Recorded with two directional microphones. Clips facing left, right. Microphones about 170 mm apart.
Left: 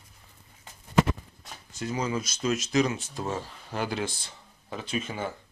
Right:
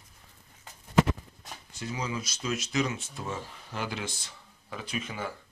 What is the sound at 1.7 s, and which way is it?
Speech, 45° left (ahead or behind).